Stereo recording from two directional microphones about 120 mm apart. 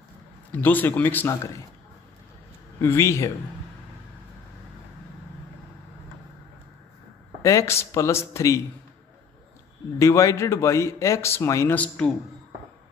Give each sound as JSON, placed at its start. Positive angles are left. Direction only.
{"t": 0.5, "sound": "speech", "side_deg": 15}
{"t": 1.3, "sound": "speech", "side_deg": 25}
{"t": 2.8, "sound": "speech", "side_deg": 20}
{"t": 7.4, "sound": "speech", "side_deg": 25}
{"t": 9.9, "sound": "speech", "side_deg": 25}